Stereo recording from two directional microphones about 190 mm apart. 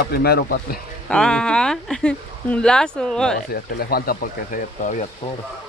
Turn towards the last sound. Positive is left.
turn(degrees=40)  # may be behind; listen again after turning